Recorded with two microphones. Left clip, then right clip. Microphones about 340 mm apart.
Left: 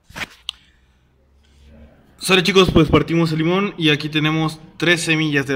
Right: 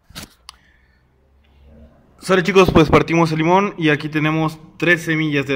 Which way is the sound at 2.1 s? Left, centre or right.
Centre.